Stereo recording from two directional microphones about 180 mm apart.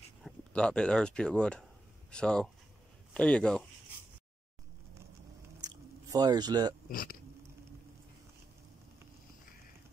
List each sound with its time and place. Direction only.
0.2 s a man's voice: 5° left (ahead or behind)
5.6 s biting: 20° right (ahead or behind)
6.9 s speech: 50° left (ahead or behind)